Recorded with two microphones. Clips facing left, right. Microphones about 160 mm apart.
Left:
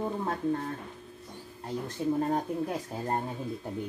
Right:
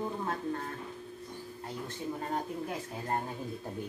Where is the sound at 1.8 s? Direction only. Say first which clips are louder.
Left 10 dB; 35° left (ahead or behind).